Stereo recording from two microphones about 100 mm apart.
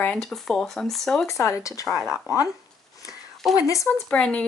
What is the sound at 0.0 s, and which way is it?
A woman's voice, 10° left (ahead or behind).